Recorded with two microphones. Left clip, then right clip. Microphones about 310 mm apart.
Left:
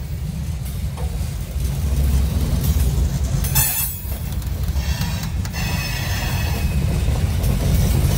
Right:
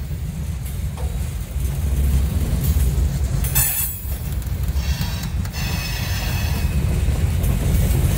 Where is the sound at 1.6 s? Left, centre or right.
Centre.